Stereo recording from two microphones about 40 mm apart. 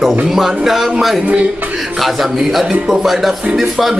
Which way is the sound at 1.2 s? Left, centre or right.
Right.